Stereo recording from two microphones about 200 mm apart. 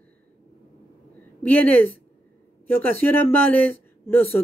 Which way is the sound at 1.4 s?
10° left (ahead or behind).